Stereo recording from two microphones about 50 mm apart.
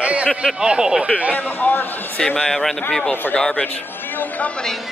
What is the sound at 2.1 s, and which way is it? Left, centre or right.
Speech, centre.